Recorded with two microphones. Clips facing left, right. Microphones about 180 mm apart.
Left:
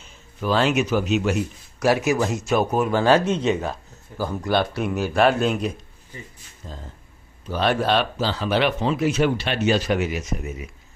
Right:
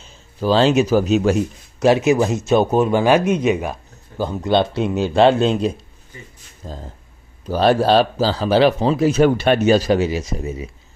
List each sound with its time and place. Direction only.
0.0 s speech: 30° right (ahead or behind)
1.8 s speech: 25° right (ahead or behind)
3.0 s speech: 15° right (ahead or behind); by 10.7 s 30° right (ahead or behind)